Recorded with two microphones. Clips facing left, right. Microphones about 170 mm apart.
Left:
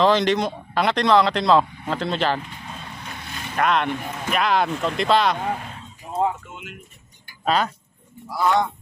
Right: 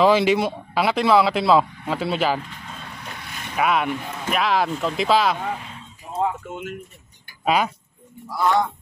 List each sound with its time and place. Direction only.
0.0 s speech: 10° right (ahead or behind)
3.5 s speech: 5° right (ahead or behind)
6.5 s speech: 45° right (ahead or behind)
7.4 s speech: 10° right (ahead or behind)
8.3 s speech: centre (ahead or behind)